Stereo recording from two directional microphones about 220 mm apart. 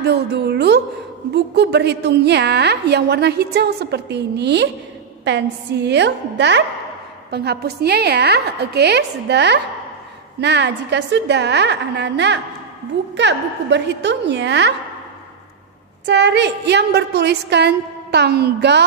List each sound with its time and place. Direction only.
0.0 s a woman's voice: 50° right (ahead or behind)
16.1 s a woman's voice: 50° right (ahead or behind)